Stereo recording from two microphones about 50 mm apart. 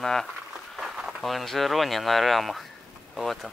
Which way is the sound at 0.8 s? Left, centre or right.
Centre.